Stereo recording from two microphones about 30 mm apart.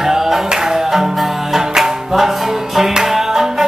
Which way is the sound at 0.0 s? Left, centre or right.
Centre.